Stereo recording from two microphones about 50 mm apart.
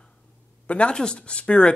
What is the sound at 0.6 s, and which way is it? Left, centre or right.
Speech, left.